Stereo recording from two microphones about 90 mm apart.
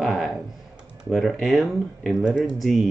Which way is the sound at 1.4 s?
Centre (ahead or behind).